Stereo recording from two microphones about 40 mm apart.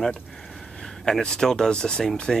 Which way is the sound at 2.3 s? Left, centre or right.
Centre.